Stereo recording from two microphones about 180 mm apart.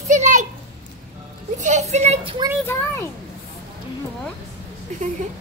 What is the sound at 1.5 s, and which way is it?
Speech, 40° right (ahead or behind).